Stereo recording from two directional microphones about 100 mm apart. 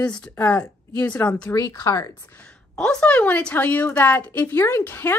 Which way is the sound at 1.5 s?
35° left (ahead or behind).